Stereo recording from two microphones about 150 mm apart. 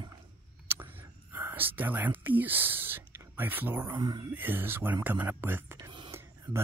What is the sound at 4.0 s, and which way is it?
Speech, 25° right (ahead or behind).